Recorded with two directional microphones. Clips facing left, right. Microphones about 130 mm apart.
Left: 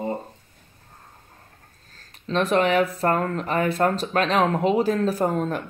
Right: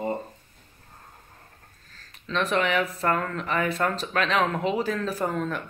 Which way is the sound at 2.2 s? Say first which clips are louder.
Left 5 dB; 35° left (ahead or behind).